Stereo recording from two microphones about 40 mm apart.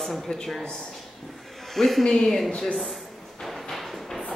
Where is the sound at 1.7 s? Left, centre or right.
Centre.